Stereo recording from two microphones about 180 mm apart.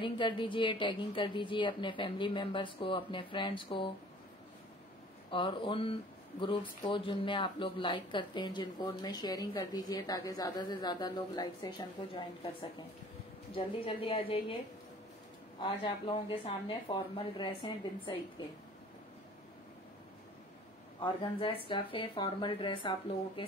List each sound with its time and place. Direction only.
0.0 s speech: 25° left (ahead or behind)
5.3 s speech: 30° left (ahead or behind)
15.6 s speech: 25° left (ahead or behind)
21.0 s speech: 30° left (ahead or behind)